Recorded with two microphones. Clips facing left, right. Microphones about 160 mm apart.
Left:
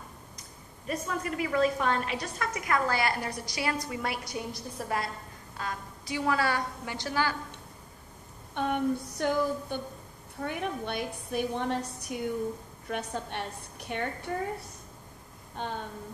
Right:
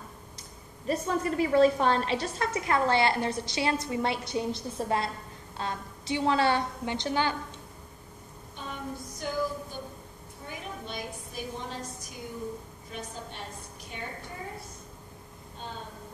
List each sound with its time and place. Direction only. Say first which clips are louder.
0.8 s a woman's voice: right 4 dB; 30° right (ahead or behind)
8.5 s a woman's voice: left 10 dB; 65° left (ahead or behind)